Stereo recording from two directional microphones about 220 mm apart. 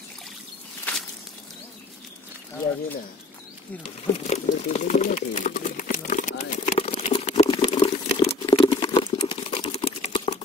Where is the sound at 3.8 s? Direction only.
30° left (ahead or behind).